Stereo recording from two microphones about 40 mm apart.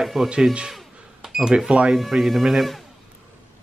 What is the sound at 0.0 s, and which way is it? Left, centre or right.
Speech, centre.